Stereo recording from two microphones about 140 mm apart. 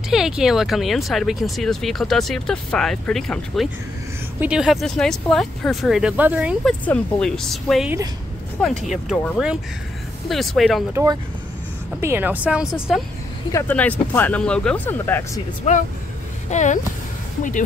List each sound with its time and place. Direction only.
0.1 s speech: 5° right (ahead or behind)
6.6 s speech: 10° left (ahead or behind)
10.2 s speech: centre (ahead or behind)
10.9 s speech: 20° right (ahead or behind); by 13.0 s 5° right (ahead or behind)
13.5 s speech: 20° left (ahead or behind)
13.7 s speech: 10° left (ahead or behind)
15.7 s speech: 55° left (ahead or behind)